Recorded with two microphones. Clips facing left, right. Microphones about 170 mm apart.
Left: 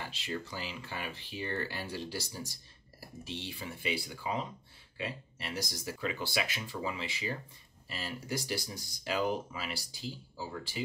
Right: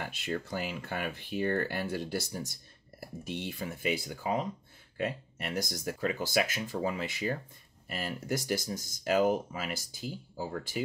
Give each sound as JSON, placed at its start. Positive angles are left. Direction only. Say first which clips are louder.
{"t": 0.0, "sound": "speech", "louder": "right 4 dB", "side_deg": -55}